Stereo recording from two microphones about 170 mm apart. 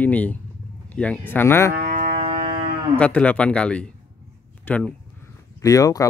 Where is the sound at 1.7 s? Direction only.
50° right (ahead or behind).